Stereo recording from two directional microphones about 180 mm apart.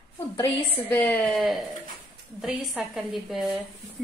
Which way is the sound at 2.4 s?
Centre (ahead or behind).